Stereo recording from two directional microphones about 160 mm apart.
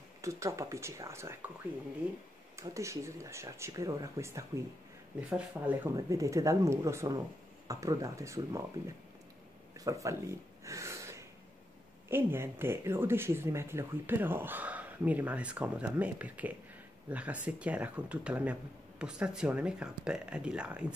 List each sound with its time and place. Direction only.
0.2 s speech: 20° right (ahead or behind)
2.5 s speech: 20° right (ahead or behind)
5.9 s speech: 20° right (ahead or behind)
9.8 s a sound: 20° right (ahead or behind)
12.1 s speech: 15° right (ahead or behind)